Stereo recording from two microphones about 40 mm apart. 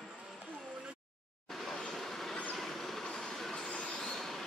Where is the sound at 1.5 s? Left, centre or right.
Centre.